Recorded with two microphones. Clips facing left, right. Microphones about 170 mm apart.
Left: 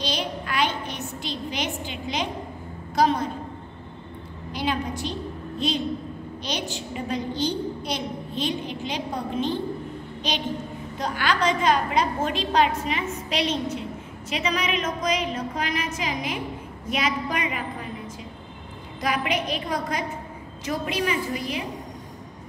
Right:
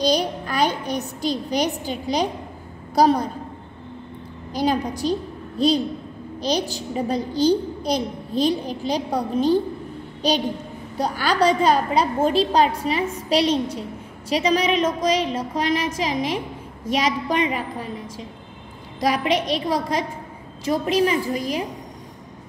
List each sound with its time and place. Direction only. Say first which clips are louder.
0.0 s a woman's voice: right 8 dB; 40° right (ahead or behind)
4.5 s a woman's voice: right 5 dB; 40° right (ahead or behind)